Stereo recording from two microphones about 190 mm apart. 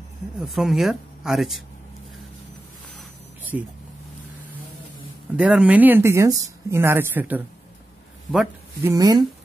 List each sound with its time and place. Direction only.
0.4 s speech: centre (ahead or behind)
3.5 s speech: 10° right (ahead or behind)
5.3 s speech: 5° right (ahead or behind)
8.8 s speech: 20° right (ahead or behind)